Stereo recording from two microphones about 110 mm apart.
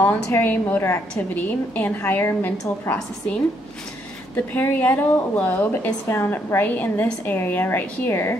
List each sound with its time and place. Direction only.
0.0 s a woman's voice: 15° left (ahead or behind)
4.6 s a woman's voice: 20° left (ahead or behind)